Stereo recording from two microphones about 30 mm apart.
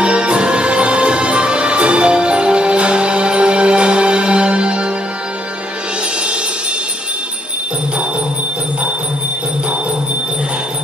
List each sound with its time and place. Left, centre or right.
0.0 s music: right